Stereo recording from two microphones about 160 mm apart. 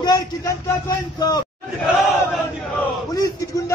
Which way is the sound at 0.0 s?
20° left (ahead or behind).